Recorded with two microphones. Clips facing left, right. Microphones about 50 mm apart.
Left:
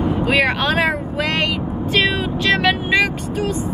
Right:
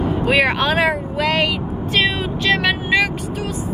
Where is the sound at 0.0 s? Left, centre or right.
Centre.